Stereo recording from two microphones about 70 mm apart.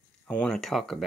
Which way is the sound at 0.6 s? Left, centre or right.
Centre.